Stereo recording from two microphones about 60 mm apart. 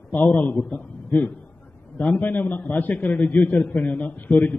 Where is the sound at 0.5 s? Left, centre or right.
Centre.